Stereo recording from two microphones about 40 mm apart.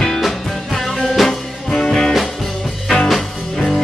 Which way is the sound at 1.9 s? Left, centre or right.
Centre.